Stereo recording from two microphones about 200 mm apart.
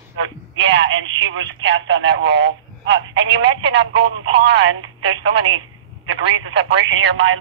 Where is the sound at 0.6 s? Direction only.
65° right (ahead or behind).